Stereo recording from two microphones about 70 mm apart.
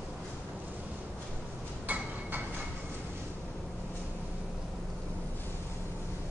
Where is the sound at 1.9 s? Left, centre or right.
Right.